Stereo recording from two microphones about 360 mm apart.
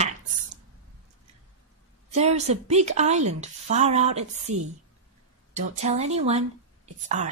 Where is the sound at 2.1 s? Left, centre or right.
Centre.